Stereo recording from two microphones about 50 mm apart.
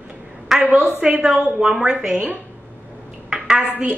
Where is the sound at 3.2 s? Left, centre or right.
Centre.